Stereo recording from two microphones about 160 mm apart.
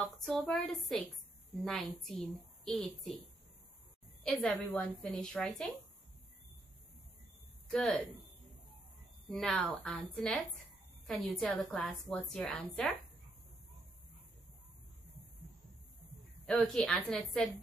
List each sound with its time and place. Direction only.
0.0 s a woman's voice: centre (ahead or behind)
4.2 s a woman's voice: 5° left (ahead or behind)
7.6 s speech: 5° left (ahead or behind)
9.3 s a woman's voice: 5° left (ahead or behind)
16.5 s a woman's voice: 5° left (ahead or behind)